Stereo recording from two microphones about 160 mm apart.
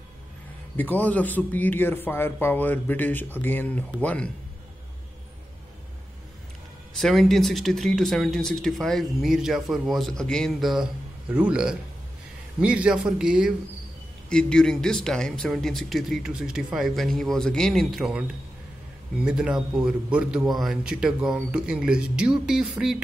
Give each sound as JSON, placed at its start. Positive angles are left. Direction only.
{"t": 0.7, "sound": "speech", "side_deg": 10}
{"t": 7.0, "sound": "a man's voice", "side_deg": 0}